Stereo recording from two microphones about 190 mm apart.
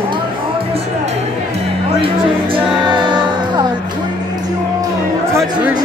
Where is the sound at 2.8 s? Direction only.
25° right (ahead or behind).